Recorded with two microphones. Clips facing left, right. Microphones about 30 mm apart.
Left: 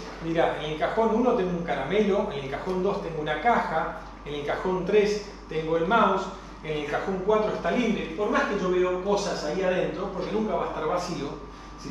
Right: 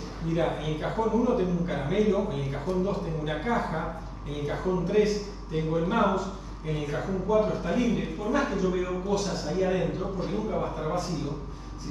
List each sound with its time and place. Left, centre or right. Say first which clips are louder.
0.2 s a man's voice: left 3 dB; left